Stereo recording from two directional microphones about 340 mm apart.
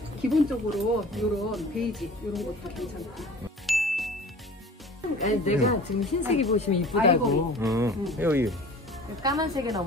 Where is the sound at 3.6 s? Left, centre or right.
Centre.